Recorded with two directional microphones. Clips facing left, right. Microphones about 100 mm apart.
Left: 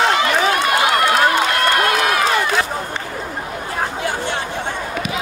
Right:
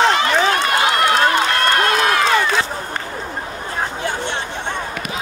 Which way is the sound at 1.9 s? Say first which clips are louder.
Right 1 dB; 30° right (ahead or behind).